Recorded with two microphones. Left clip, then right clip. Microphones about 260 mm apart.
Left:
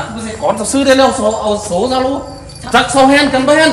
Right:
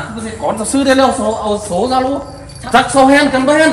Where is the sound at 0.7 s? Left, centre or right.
Centre.